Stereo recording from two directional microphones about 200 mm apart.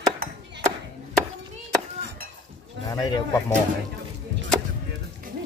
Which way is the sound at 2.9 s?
20° left (ahead or behind).